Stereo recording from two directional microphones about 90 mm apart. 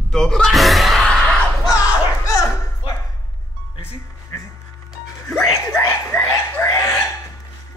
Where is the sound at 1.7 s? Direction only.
35° left (ahead or behind).